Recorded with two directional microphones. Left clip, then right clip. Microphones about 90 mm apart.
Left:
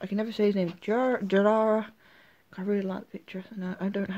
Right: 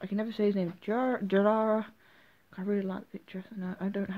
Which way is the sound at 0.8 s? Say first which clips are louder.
Left 4 dB; 10° left (ahead or behind).